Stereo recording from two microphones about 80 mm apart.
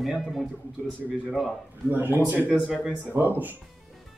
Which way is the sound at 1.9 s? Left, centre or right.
Right.